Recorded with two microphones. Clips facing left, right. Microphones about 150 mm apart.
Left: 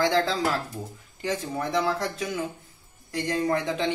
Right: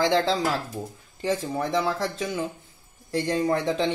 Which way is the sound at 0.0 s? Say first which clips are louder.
Right 1 dB; 25° right (ahead or behind).